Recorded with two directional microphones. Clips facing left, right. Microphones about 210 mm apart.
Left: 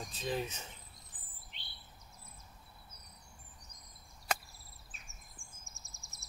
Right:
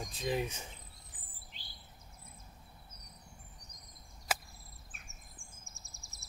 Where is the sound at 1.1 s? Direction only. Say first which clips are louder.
Right 1 dB; 10° right (ahead or behind).